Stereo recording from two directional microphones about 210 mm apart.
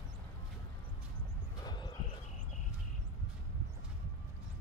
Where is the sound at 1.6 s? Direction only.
20° left (ahead or behind).